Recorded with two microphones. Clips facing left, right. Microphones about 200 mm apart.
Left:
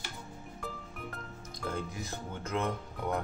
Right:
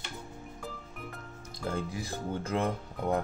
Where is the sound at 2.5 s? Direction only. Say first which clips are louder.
Right 1 dB; 30° right (ahead or behind).